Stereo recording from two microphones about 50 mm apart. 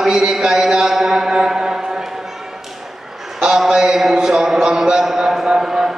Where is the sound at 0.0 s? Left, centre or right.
Centre.